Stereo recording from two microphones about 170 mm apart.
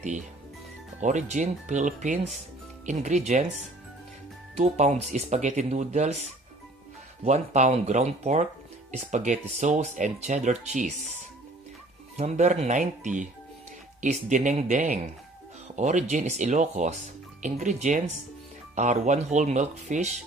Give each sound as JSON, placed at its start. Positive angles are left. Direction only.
{"t": 1.0, "sound": "speech", "side_deg": -45}
{"t": 7.2, "sound": "speech", "side_deg": -40}
{"t": 12.2, "sound": "speech", "side_deg": -40}